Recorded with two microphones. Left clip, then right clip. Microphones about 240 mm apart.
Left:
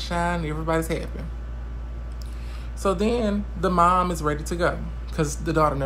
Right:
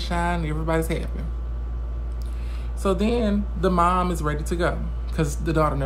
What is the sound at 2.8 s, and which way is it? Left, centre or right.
Speech, centre.